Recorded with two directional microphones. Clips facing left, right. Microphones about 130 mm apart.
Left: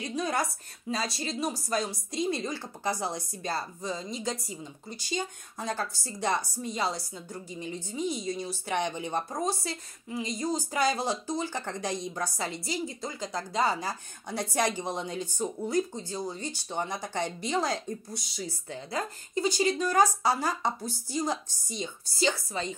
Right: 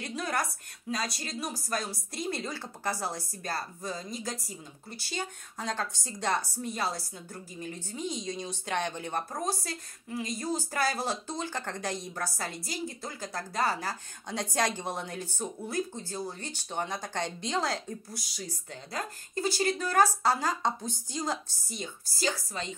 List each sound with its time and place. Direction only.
0.0 s a woman's voice: 20° left (ahead or behind)